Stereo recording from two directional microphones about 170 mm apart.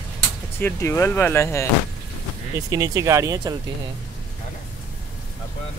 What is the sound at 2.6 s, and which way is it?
Speech, 20° right (ahead or behind).